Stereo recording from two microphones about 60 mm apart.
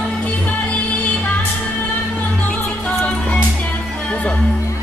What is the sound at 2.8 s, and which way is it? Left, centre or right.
Music, centre.